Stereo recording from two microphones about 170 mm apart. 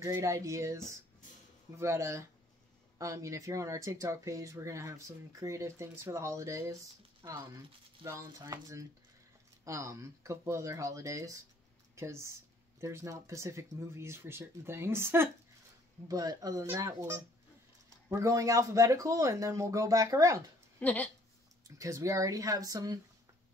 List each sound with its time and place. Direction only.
0.0 s speech: 15° right (ahead or behind)
20.8 s speech: 10° left (ahead or behind)
21.6 s speech: 20° right (ahead or behind)